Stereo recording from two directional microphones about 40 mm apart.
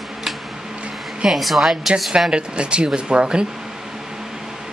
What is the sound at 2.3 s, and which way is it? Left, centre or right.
Speech, right.